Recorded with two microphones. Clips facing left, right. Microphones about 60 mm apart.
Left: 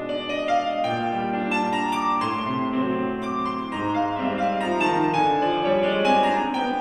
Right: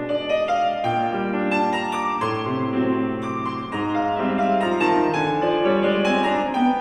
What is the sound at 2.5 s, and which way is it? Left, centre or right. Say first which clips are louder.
Music: right 2 dB; centre.